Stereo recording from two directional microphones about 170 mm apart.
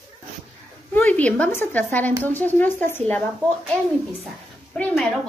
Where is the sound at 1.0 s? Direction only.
10° left (ahead or behind).